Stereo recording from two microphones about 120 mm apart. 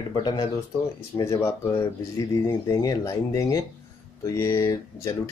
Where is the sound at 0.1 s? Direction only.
35° left (ahead or behind).